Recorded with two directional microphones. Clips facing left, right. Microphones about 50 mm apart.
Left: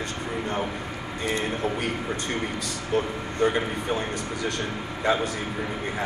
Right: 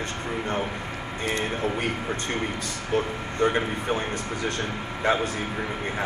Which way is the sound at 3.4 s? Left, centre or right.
Right.